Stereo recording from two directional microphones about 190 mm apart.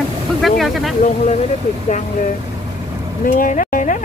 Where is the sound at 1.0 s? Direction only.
35° left (ahead or behind).